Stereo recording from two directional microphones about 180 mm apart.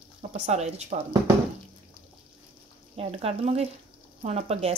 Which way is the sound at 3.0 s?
35° right (ahead or behind).